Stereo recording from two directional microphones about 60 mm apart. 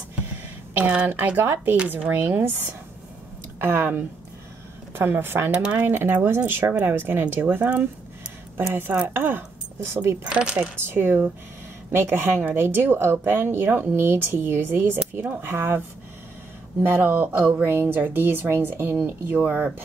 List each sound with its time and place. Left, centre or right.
0.7 s speech: right
5.5 s speech: right
5.9 s speech: right
9.0 s speech: right
10.2 s speech: centre
10.9 s speech: right
15.1 s speech: right
15.4 s speech: right
16.9 s speech: right